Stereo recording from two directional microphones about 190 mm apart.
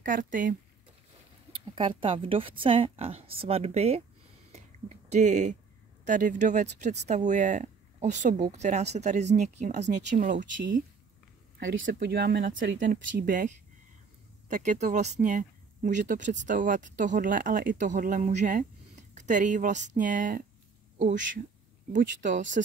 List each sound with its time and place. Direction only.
0.0 s speech: 45° right (ahead or behind)
1.8 s a woman's voice: 25° right (ahead or behind)
4.5 s a sound: 35° right (ahead or behind)
6.0 s speech: 40° right (ahead or behind)
11.9 s speech: 55° right (ahead or behind); by 22.6 s 40° right (ahead or behind)